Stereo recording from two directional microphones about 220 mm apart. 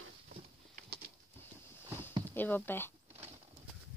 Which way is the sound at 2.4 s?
10° left (ahead or behind).